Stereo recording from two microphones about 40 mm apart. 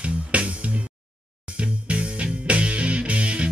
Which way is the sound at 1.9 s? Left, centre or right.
Right.